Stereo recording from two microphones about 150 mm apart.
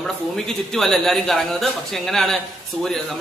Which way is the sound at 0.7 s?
Centre (ahead or behind).